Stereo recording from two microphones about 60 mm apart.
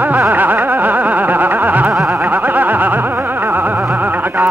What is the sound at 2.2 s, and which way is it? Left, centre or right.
Music, right.